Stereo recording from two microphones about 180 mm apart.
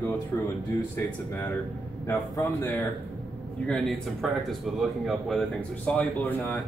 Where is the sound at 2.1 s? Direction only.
15° left (ahead or behind).